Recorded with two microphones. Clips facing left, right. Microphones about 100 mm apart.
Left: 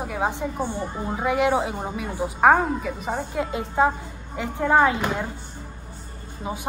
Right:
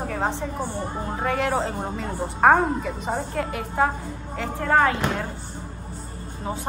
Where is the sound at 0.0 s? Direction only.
10° left (ahead or behind).